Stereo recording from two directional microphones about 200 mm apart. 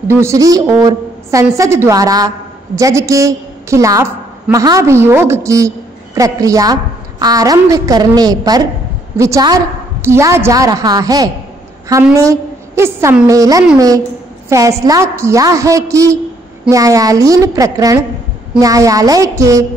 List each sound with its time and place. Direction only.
0.1 s a woman's voice: 15° right (ahead or behind)